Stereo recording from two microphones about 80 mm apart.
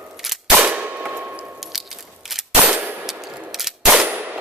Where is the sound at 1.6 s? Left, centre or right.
Centre.